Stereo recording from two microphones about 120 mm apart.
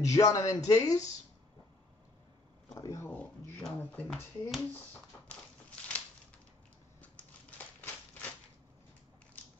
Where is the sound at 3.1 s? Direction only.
15° left (ahead or behind).